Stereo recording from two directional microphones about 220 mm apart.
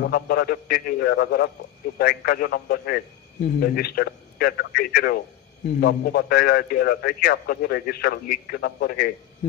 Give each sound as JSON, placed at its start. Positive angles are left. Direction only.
{"t": 0.0, "sound": "a man's voice", "side_deg": 45}